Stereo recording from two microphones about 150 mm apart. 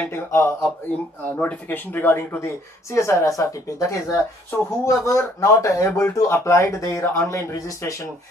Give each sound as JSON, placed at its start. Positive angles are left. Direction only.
{"t": 0.0, "sound": "speech", "side_deg": 15}